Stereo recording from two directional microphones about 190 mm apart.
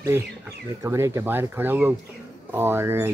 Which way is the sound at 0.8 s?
15° right (ahead or behind).